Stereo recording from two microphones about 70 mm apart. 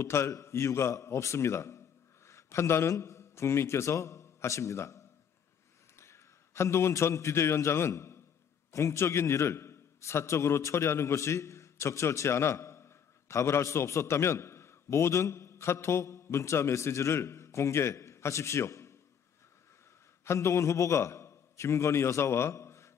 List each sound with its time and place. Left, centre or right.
0.0 s a man's voice: left
20.2 s a man's voice: left